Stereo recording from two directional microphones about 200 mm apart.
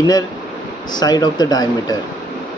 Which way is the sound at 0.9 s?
20° left (ahead or behind).